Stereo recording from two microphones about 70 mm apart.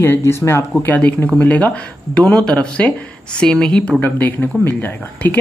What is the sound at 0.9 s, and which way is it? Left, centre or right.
A woman's voice, left.